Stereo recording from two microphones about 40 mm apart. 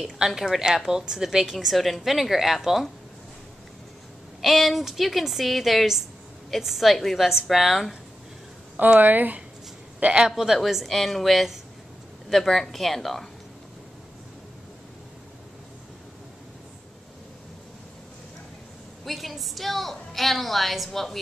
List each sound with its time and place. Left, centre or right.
0.7 s a woman's voice: centre
4.4 s a woman's voice: centre
8.7 s speech: right
10.1 s a woman's voice: centre
19.0 s a woman's voice: centre